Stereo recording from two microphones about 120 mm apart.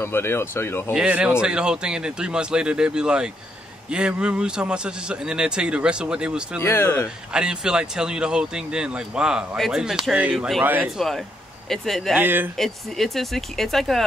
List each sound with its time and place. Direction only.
0.0 s speech: 20° left (ahead or behind)
0.9 s speech: 10° right (ahead or behind)
6.6 s speech: 20° left (ahead or behind)
7.3 s speech: 5° right (ahead or behind)
10.6 s speech: 15° right (ahead or behind)
11.7 s speech: centre (ahead or behind)
12.2 s speech: 15° right (ahead or behind)
12.5 s speech: centre (ahead or behind)